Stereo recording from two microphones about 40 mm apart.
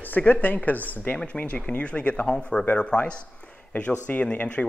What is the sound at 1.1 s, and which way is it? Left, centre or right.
Speech, left.